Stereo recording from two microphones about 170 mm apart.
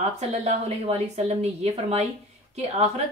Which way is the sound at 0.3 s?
40° right (ahead or behind).